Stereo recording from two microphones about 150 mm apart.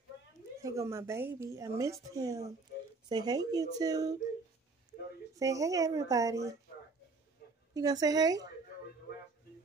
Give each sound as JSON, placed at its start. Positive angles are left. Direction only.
{"t": 0.6, "sound": "a woman's voice", "side_deg": -20}
{"t": 5.3, "sound": "a woman's voice", "side_deg": -20}
{"t": 7.7, "sound": "a woman's voice", "side_deg": -25}